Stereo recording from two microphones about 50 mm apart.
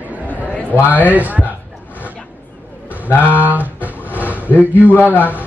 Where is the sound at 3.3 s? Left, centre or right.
Right.